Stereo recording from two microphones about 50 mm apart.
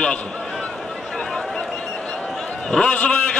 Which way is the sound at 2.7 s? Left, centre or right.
Left.